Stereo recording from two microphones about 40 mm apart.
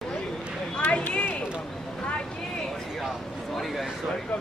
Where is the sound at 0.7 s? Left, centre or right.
Left.